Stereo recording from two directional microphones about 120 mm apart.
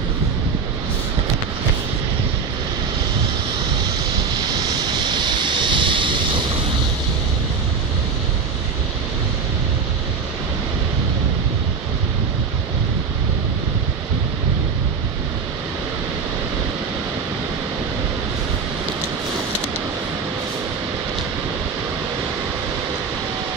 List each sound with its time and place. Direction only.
4.4 s vehicle: 35° right (ahead or behind)